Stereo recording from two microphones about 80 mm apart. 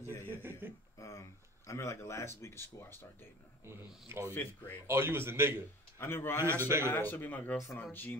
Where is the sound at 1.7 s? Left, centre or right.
Left.